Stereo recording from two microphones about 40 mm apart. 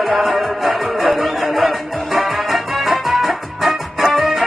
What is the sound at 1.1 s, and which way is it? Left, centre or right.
Music, centre.